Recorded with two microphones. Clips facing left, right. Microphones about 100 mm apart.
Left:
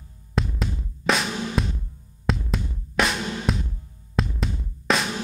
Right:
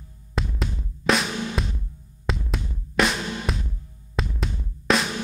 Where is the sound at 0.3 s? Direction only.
Centre (ahead or behind).